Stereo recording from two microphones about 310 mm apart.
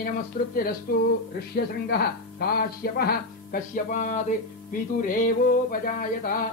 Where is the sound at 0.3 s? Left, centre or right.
Left.